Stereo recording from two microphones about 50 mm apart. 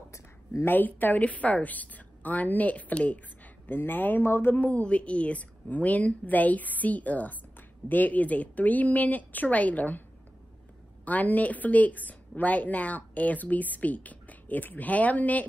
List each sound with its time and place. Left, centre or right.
0.1 s a sound: left
0.7 s a woman's voice: left
3.6 s a woman's voice: left
4.2 s speech: left
4.6 s a woman's voice: left
11.1 s a woman's voice: left